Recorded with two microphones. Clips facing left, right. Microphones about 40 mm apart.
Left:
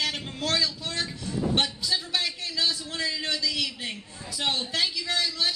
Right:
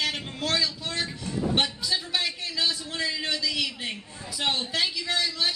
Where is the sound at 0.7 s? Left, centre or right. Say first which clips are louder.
Right 1 dB; right.